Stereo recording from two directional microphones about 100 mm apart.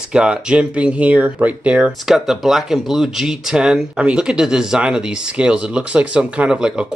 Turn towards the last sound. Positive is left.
turn(degrees=-10)  # may be behind; listen again after turning